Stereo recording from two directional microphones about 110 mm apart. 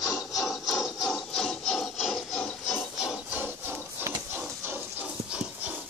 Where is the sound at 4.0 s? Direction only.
20° right (ahead or behind).